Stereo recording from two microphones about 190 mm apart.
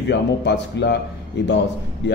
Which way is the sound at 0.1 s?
65° left (ahead or behind).